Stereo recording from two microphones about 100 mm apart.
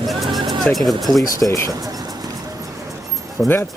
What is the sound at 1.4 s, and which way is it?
Speech, 35° left (ahead or behind).